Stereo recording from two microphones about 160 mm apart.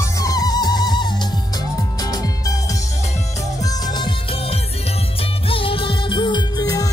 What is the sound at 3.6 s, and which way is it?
Music, 30° left (ahead or behind).